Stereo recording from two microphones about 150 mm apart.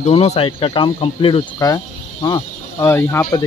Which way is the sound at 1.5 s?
25° left (ahead or behind).